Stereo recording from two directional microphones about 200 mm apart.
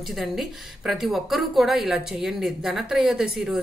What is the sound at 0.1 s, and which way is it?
Speech, centre (ahead or behind).